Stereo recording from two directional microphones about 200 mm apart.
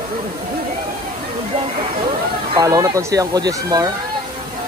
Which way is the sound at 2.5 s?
15° right (ahead or behind).